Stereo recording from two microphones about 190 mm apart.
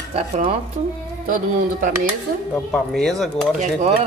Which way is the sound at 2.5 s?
Centre (ahead or behind).